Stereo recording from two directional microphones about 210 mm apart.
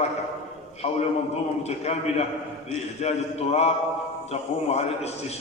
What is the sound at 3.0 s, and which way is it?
Speech, 30° left (ahead or behind).